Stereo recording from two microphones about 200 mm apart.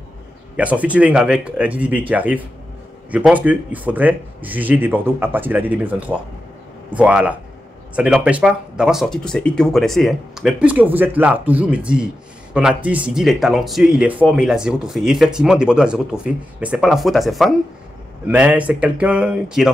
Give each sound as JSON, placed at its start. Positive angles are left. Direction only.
{"t": 0.6, "sound": "speech", "side_deg": -5}